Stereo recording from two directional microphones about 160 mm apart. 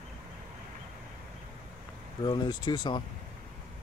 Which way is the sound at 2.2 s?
30° left (ahead or behind).